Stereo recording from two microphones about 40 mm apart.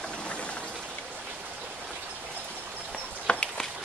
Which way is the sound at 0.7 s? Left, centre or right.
Right.